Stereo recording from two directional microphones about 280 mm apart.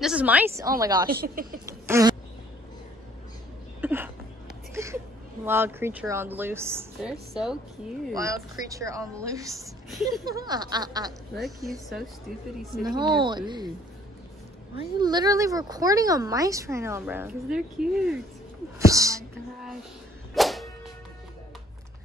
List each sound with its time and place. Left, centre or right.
0.0 s speech: centre
1.1 s speech: right
1.7 s a sound: centre
3.8 s speech: centre
11.3 s a woman's voice: centre
12.8 s speech: centre
15.0 s speech: centre
18.9 s music: centre
20.3 s music: centre